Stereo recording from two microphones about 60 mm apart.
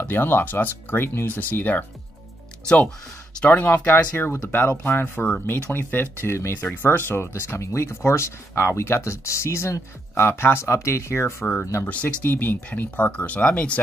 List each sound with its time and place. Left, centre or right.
0.0 s speech: left
3.4 s speech: left
3.7 s speech: left
5.0 s speech: left
11.9 s speech: left